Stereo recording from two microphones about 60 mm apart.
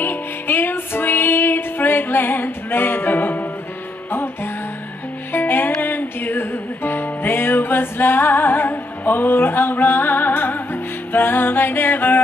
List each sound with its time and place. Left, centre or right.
0.0 s music: left
5.3 s music: left